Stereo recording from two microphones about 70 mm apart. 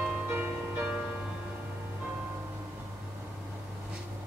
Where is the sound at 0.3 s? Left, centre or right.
Right.